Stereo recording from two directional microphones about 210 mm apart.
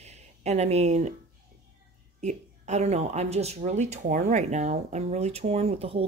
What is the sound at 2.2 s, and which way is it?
Speech, 35° right (ahead or behind).